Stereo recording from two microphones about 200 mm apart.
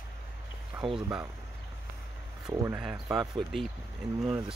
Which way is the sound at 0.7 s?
10° right (ahead or behind).